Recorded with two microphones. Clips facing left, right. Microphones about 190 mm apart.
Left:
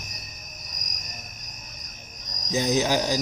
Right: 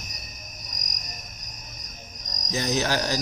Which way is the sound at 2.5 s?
15° left (ahead or behind).